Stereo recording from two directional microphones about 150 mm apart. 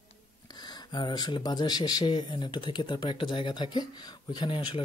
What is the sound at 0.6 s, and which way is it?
Speech, 30° left (ahead or behind).